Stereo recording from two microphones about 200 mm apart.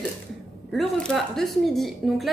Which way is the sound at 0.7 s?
5° left (ahead or behind).